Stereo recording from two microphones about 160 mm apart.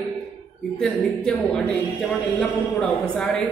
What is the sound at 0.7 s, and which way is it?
Speech, 5° left (ahead or behind).